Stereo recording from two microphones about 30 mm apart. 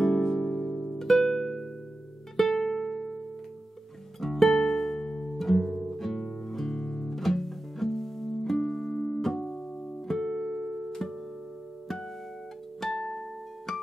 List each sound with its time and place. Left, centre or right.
0.0 s harp: centre
2.3 s music: centre
4.2 s music: centre
12.8 s music: centre